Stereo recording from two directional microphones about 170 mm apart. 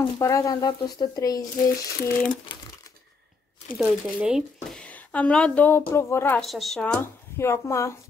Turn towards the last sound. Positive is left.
turn(degrees=15)  # may be behind; listen again after turning